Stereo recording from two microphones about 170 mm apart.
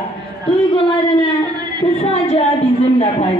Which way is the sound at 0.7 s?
30° left (ahead or behind).